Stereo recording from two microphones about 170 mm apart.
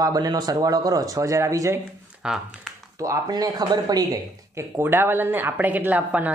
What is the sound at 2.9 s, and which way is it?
Speech, 20° right (ahead or behind).